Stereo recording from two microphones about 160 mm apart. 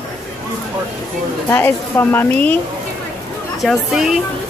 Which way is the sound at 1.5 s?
15° left (ahead or behind).